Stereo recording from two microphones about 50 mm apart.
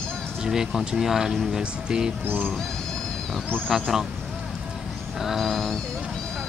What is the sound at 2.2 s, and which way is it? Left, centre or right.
Speech, right.